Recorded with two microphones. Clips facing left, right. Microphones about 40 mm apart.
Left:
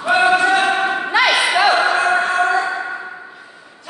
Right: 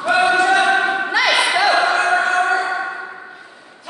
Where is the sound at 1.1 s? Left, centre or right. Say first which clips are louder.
Left 3 dB; left.